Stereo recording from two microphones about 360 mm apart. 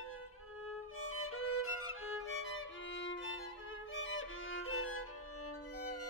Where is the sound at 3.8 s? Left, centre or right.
Left.